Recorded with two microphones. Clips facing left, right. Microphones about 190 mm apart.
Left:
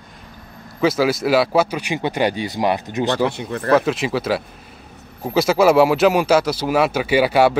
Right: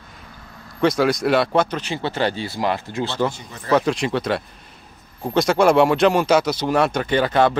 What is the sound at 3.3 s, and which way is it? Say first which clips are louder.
Speech: left 11 dB; 65° left (ahead or behind).